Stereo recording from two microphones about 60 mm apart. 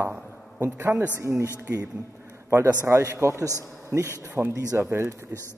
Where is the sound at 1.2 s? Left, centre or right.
Right.